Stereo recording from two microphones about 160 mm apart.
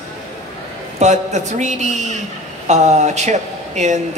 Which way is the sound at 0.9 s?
45° right (ahead or behind).